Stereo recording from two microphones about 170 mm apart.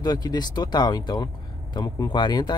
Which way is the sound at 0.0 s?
25° left (ahead or behind).